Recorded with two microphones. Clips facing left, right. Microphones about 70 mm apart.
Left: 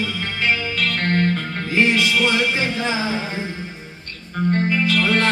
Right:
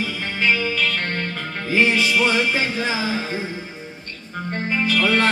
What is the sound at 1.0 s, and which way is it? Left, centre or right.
Music, left.